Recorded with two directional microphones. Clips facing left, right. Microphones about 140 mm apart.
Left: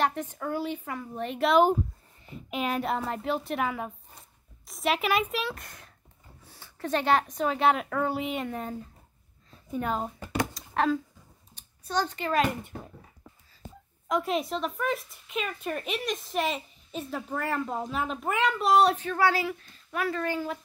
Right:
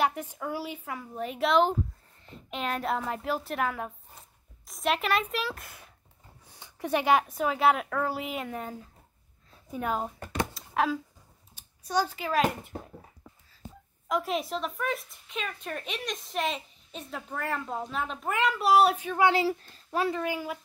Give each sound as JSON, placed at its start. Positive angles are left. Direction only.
{"t": 0.0, "sound": "a woman's voice", "side_deg": -10}
{"t": 10.4, "sound": "a sound", "side_deg": -5}
{"t": 11.5, "sound": "speech", "side_deg": -10}
{"t": 14.0, "sound": "speech", "side_deg": 0}
{"t": 19.4, "sound": "a child's voice", "side_deg": -30}
{"t": 20.1, "sound": "speech", "side_deg": -10}